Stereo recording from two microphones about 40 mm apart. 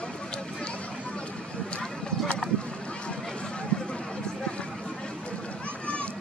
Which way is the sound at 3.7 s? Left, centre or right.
Left.